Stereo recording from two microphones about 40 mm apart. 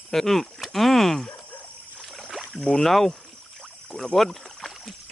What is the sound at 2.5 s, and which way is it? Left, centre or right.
Speech, centre.